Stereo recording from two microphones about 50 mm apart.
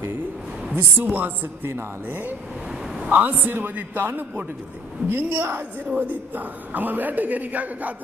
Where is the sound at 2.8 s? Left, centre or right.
Centre.